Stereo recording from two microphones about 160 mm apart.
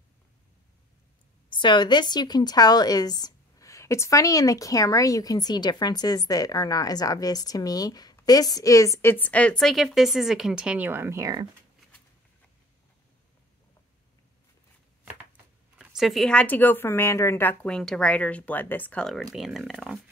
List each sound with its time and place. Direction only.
1.5 s a woman's voice: 30° left (ahead or behind); by 11.4 s 20° right (ahead or behind)
15.8 s a woman's voice: 5° right (ahead or behind)